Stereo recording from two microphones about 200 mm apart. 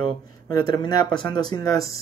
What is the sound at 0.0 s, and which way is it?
Speech, 20° left (ahead or behind).